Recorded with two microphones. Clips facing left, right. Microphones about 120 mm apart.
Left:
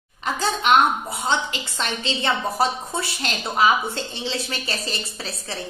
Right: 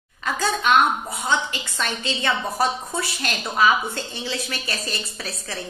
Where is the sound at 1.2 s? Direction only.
25° left (ahead or behind).